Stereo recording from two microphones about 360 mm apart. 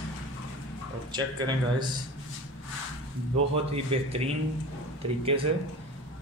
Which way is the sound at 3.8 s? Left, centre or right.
Centre.